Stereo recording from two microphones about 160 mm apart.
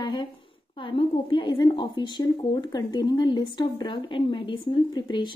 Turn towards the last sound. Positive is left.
turn(degrees=30)  # may be behind; listen again after turning